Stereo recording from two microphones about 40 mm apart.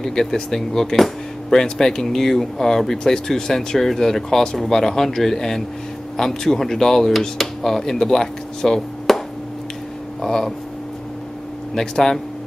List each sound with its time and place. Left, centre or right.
0.0 s speech: centre
7.1 s speech: centre
10.2 s speech: centre
11.7 s speech: centre